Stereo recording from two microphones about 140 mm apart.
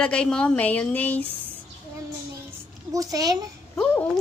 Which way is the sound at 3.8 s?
10° left (ahead or behind).